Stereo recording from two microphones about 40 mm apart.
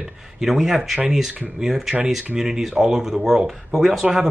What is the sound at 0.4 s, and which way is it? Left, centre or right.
Speech, centre.